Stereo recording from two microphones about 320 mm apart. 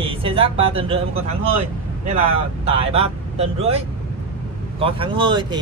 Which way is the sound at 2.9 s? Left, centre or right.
Centre.